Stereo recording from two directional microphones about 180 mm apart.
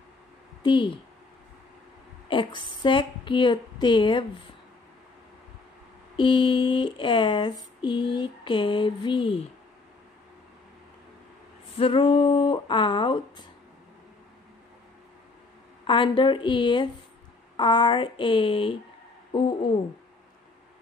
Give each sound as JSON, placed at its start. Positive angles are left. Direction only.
{"t": 0.6, "sound": "a woman's voice", "side_deg": 25}
{"t": 2.2, "sound": "speech", "side_deg": 25}
{"t": 6.1, "sound": "speech", "side_deg": 25}
{"t": 11.7, "sound": "speech", "side_deg": 30}
{"t": 15.9, "sound": "speech", "side_deg": 25}